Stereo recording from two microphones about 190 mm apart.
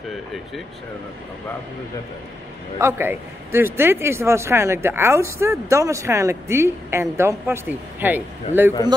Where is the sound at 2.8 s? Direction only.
10° right (ahead or behind).